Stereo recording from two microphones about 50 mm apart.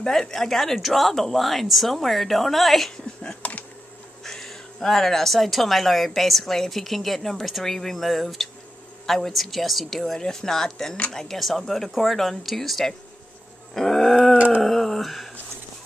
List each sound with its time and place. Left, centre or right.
0.0 s speech: centre
3.4 s insect: left
4.2 s speech: centre
13.7 s a sound: centre